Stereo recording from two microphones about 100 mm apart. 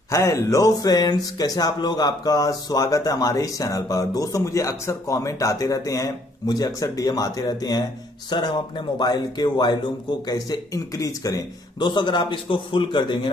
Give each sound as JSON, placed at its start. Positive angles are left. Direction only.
{"t": 0.1, "sound": "speech", "side_deg": 30}
{"t": 11.8, "sound": "a man's voice", "side_deg": 50}